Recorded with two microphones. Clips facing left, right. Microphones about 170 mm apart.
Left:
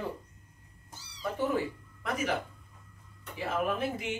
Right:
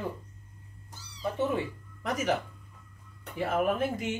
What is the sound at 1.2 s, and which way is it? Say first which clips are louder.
Cat: right 1 dB; 25° right (ahead or behind).